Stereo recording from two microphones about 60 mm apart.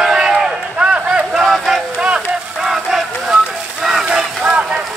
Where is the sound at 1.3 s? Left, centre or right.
Centre.